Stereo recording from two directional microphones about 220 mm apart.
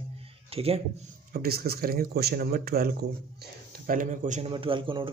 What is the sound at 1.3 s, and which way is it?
Speech, 45° right (ahead or behind).